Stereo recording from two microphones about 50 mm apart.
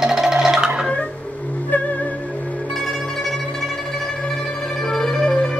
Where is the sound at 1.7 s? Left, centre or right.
Left.